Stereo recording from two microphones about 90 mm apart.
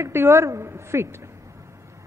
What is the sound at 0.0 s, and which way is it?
A woman's voice, 30° right (ahead or behind).